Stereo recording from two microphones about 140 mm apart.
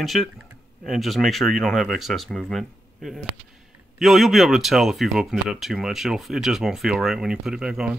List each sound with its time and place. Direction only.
0.0 s speech: centre (ahead or behind)